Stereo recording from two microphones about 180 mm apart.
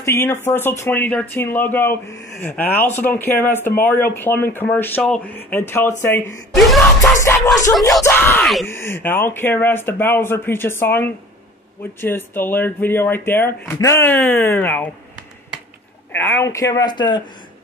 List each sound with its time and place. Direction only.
0.0 s speech: 15° left (ahead or behind)
6.5 s music: centre (ahead or behind)
7.2 s speech: 15° left (ahead or behind)
16.1 s speech: 10° left (ahead or behind)